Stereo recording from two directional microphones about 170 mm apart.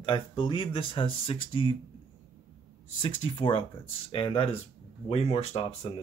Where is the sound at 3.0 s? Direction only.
30° left (ahead or behind).